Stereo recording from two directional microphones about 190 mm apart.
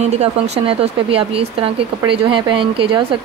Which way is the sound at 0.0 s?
35° right (ahead or behind).